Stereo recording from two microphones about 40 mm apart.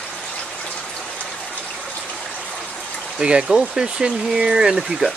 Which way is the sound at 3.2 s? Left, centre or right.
Right.